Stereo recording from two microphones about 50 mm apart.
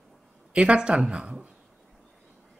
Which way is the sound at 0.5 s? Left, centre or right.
Centre.